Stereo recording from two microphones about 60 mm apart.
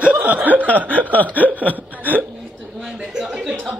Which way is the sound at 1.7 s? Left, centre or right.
Right.